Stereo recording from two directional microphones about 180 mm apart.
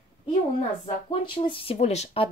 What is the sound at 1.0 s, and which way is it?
Speech, 25° left (ahead or behind).